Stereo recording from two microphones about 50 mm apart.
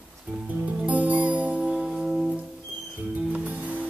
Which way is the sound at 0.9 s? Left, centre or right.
Right.